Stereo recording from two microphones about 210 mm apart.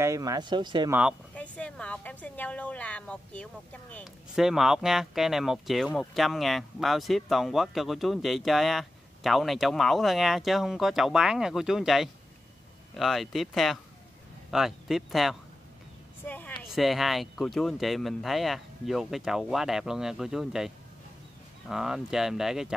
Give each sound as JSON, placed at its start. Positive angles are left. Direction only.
{"t": 0.0, "sound": "speech", "side_deg": -15}
{"t": 1.3, "sound": "speech", "side_deg": 5}
{"t": 16.3, "sound": "a sound", "side_deg": 10}
{"t": 16.7, "sound": "speech", "side_deg": 0}